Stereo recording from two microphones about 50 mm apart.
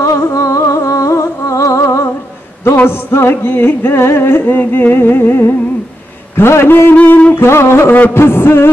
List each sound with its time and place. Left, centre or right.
0.0 s humming: left
2.8 s music: left
7.4 s music: left
8.1 s music: left